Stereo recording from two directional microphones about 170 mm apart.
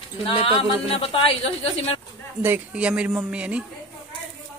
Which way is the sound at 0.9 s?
35° left (ahead or behind).